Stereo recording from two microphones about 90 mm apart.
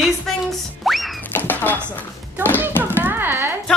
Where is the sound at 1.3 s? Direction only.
20° left (ahead or behind).